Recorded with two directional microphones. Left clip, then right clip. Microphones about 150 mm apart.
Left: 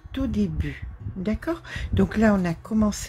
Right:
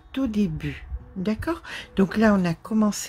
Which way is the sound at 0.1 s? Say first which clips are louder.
Right 1 dB; 20° right (ahead or behind).